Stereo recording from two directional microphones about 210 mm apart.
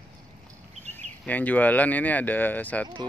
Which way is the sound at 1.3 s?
10° left (ahead or behind).